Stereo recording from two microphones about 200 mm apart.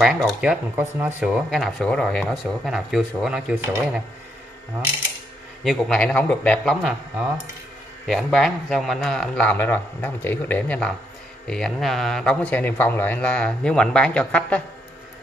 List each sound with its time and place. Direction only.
0.0 s speech: centre (ahead or behind)
5.6 s speech: centre (ahead or behind)
8.1 s speech: centre (ahead or behind)